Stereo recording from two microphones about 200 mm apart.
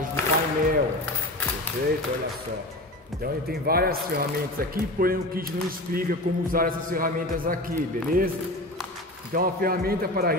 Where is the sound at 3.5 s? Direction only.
50° right (ahead or behind).